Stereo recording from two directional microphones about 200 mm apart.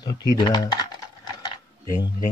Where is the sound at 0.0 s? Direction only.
20° left (ahead or behind).